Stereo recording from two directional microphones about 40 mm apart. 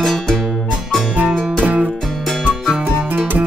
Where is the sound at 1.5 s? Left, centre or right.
Right.